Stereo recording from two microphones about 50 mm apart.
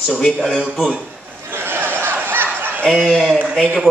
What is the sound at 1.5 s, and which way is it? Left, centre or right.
Chuckle, right.